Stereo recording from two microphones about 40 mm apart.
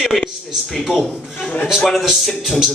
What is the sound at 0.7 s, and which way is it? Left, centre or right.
A man's voice, centre.